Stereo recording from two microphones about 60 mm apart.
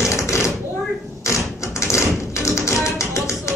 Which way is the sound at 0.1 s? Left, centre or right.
Left.